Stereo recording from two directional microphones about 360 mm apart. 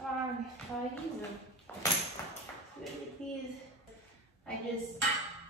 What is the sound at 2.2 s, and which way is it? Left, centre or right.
A woman's voice, centre.